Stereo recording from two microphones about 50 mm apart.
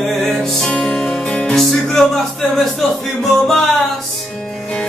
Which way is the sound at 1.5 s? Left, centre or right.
Centre.